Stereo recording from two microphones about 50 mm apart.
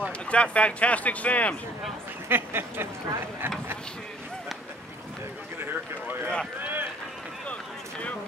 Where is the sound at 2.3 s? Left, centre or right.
Right.